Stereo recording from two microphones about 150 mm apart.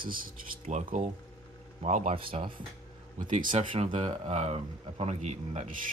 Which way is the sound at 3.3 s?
60° right (ahead or behind).